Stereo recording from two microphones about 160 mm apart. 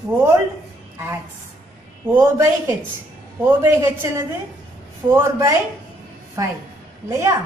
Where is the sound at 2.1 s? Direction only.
15° right (ahead or behind).